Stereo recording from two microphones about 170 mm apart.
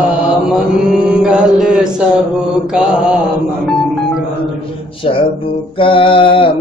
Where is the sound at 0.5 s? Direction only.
5° right (ahead or behind).